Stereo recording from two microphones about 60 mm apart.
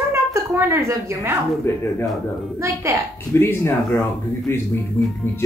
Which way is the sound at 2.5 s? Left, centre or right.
Right.